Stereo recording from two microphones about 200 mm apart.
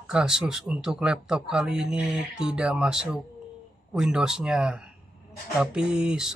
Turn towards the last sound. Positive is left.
turn(degrees=0)  # may be behind; listen again after turning